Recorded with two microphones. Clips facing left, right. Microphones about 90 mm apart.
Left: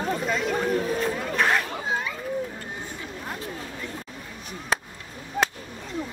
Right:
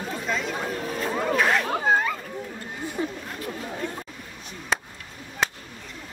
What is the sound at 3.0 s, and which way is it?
Chatter, 40° right (ahead or behind).